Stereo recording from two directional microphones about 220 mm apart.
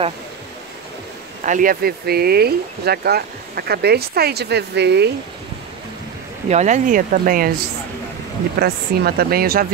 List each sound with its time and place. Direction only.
1.4 s speech: 35° right (ahead or behind)
6.5 s speech: 35° right (ahead or behind)
8.5 s speech: 45° right (ahead or behind)